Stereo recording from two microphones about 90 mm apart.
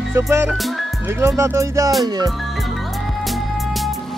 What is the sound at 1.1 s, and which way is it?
Music, 30° right (ahead or behind).